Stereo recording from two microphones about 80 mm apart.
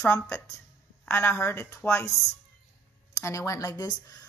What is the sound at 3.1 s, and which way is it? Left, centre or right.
Speech, left.